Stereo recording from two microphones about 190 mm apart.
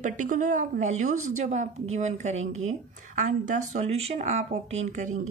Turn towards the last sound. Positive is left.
turn(degrees=-40)  # may be behind; listen again after turning